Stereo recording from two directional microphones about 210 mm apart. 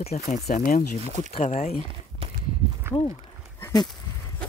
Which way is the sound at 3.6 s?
20° left (ahead or behind).